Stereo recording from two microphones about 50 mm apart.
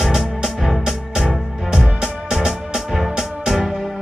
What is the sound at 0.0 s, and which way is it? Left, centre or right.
Music, centre.